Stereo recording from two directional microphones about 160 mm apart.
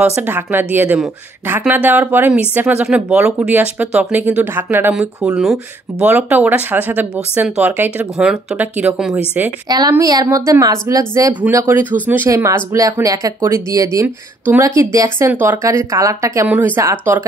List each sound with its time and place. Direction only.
0.0 s speech: 10° right (ahead or behind)
9.7 s speech: 25° right (ahead or behind)